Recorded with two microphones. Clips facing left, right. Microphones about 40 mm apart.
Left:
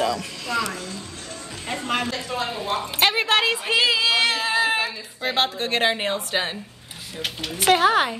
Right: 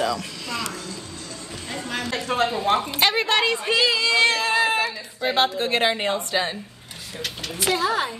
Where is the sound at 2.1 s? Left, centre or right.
Right.